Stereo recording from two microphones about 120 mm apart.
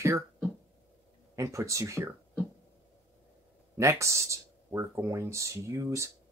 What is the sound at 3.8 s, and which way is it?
Speech, 25° right (ahead or behind).